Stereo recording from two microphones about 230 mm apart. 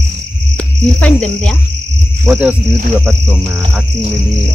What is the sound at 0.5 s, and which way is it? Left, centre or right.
Speech, centre.